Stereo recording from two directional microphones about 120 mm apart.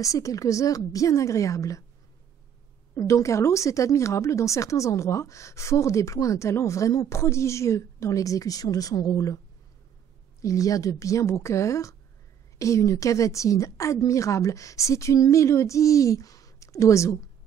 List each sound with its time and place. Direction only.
0.0 s speech: 25° left (ahead or behind)
3.0 s speech: 25° left (ahead or behind)
10.4 s speech: 30° left (ahead or behind)